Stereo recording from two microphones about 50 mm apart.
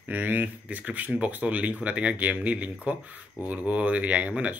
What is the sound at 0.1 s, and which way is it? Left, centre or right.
Speech, right.